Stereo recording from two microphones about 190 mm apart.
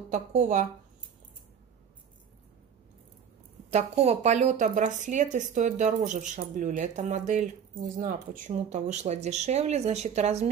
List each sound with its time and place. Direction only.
0.1 s speech: 40° right (ahead or behind)
3.7 s speech: 35° right (ahead or behind)